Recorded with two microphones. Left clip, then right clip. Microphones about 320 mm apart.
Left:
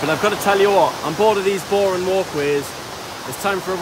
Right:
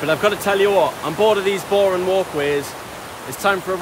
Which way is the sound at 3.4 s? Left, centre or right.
Centre.